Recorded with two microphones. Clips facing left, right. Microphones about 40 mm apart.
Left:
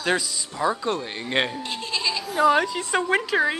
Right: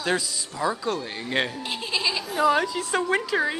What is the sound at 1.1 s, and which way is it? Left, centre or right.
Speech, centre.